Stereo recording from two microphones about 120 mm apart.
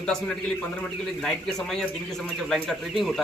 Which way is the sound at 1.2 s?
5° left (ahead or behind).